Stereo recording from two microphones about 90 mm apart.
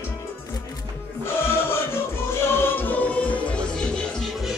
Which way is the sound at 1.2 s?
25° left (ahead or behind).